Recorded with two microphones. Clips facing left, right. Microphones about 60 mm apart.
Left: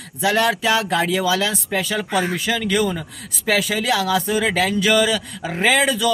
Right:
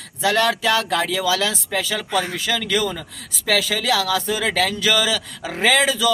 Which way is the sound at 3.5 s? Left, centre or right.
Centre.